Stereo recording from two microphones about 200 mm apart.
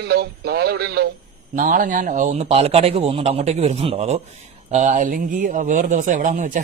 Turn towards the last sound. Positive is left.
turn(degrees=-40)  # may be behind; listen again after turning